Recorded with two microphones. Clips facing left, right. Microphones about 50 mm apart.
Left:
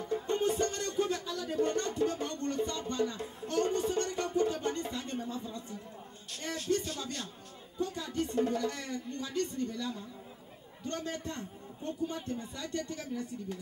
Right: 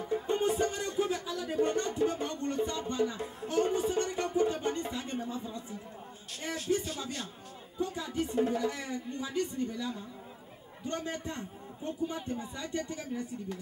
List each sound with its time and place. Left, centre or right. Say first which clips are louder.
0.0 s music: right 1 dB; centre
6.4 s a sound: right 1 dB; centre
7.8 s music: right 1 dB; centre
10.8 s a man's voice: right 1 dB; centre